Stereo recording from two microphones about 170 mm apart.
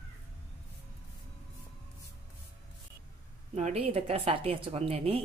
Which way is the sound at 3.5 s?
40° right (ahead or behind).